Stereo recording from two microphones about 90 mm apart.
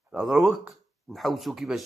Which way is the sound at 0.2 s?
Centre (ahead or behind).